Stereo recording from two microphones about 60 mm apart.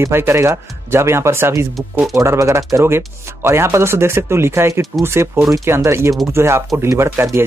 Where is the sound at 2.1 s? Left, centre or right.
Right.